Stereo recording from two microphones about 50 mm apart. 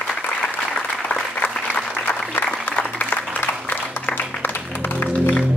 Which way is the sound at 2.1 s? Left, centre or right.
Left.